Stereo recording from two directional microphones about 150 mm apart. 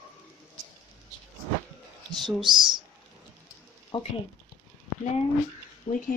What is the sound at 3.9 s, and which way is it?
Speech, 30° left (ahead or behind).